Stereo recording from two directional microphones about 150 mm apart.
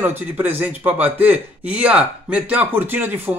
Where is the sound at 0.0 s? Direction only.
15° right (ahead or behind).